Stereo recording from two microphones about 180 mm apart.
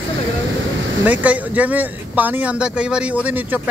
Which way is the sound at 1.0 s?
10° right (ahead or behind).